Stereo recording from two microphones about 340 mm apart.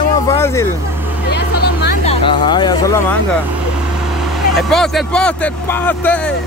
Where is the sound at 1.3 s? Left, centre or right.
Left.